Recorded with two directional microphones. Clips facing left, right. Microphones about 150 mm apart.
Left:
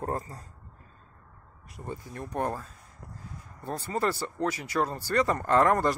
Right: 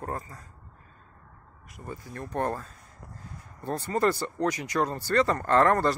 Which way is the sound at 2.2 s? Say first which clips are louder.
Right 2 dB; 15° left (ahead or behind).